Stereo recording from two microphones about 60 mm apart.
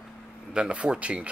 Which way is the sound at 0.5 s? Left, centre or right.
Centre.